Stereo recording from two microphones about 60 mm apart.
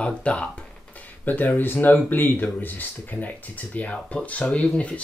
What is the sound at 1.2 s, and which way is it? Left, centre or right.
Speech, left.